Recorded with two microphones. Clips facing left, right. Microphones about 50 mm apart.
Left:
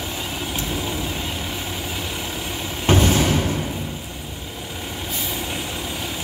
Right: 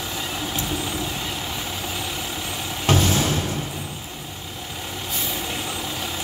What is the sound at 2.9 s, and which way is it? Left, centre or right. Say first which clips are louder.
Music: left 3 dB; left.